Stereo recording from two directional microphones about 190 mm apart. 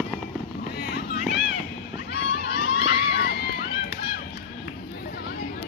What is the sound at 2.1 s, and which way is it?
Crowd, 60° left (ahead or behind).